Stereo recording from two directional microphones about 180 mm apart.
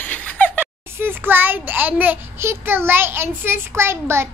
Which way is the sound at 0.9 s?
10° right (ahead or behind).